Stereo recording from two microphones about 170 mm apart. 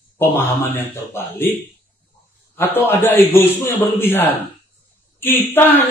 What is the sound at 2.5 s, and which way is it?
Mantra, 10° left (ahead or behind).